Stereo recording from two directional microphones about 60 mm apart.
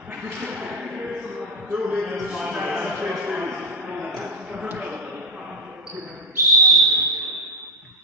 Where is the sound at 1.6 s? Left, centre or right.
Right.